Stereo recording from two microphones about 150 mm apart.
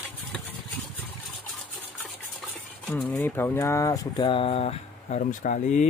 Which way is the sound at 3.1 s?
15° left (ahead or behind).